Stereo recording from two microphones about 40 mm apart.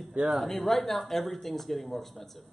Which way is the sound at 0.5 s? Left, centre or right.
Centre.